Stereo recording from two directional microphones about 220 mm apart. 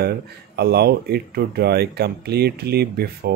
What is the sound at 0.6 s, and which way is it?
Speech, 45° right (ahead or behind).